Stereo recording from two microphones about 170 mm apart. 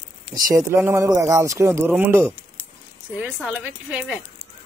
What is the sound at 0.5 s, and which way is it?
Speech, 15° right (ahead or behind).